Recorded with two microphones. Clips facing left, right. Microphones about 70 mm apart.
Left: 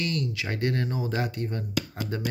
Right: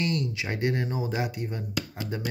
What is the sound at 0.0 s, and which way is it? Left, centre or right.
Speech, right.